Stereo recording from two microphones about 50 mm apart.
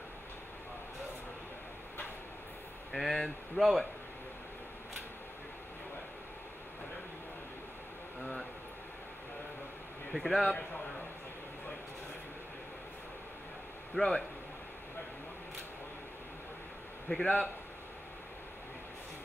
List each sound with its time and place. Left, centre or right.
2.9 s speech: centre
10.1 s speech: centre
14.0 s speech: left
17.1 s speech: centre